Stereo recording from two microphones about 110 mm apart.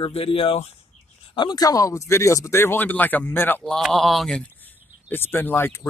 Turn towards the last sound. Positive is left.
turn(degrees=20)  # may be behind; listen again after turning